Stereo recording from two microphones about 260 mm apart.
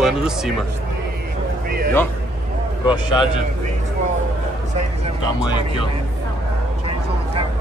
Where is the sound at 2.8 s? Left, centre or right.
Centre.